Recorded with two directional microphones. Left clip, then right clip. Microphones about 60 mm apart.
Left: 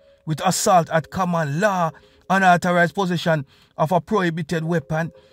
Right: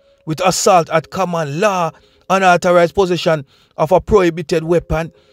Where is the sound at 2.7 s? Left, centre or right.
Right.